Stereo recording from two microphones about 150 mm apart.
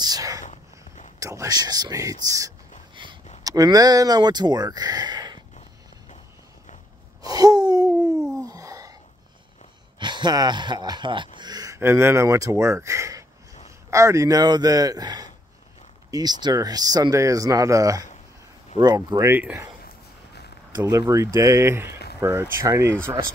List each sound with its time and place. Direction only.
0.0 s speech: 25° right (ahead or behind)
0.4 s a sound: 55° left (ahead or behind)
1.2 s speech: 20° right (ahead or behind)
3.0 s a sound: 30° right (ahead or behind)
3.4 s speech: 25° right (ahead or behind)
7.2 s gasp: 25° right (ahead or behind)
8.4 s a sound: 20° right (ahead or behind)
9.9 s a man's voice: 30° right (ahead or behind); by 19.7 s 10° right (ahead or behind)
20.8 s speech: 20° right (ahead or behind)